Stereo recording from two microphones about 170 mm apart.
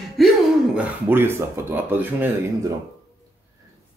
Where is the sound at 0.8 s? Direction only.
10° right (ahead or behind).